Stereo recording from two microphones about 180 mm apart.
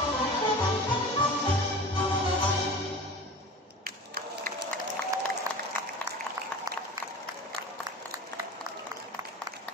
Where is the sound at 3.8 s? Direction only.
55° right (ahead or behind).